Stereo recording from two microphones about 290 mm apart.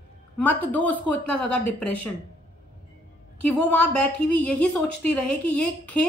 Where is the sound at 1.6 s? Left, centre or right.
Left.